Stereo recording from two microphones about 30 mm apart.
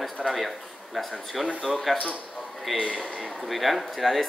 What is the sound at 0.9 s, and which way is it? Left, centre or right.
Speech, centre.